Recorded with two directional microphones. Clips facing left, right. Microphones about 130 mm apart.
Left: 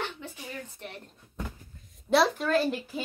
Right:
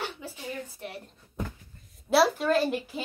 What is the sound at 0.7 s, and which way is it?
A woman's voice, 10° right (ahead or behind).